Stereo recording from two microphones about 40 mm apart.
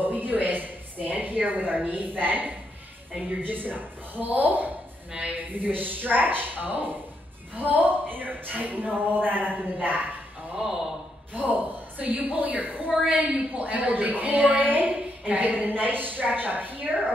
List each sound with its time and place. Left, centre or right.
0.0 s speech: right
3.1 s a woman's voice: right
3.4 s speech: right
10.5 s speech: centre
11.3 s speech: right
13.3 s speech: right